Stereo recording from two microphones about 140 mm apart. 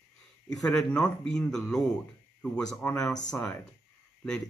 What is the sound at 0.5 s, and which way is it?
A man's voice, centre (ahead or behind).